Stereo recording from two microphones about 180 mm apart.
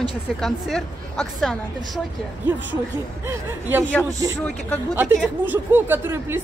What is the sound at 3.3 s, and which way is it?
Speech, 10° right (ahead or behind).